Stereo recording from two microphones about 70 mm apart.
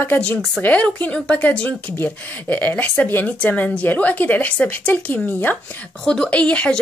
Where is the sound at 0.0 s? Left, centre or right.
Left.